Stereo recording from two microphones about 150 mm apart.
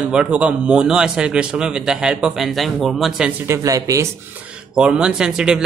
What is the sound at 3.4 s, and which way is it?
Speech, 20° right (ahead or behind).